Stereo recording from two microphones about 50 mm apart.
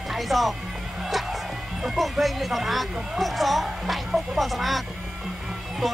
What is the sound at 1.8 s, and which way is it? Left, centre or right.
Speech, centre.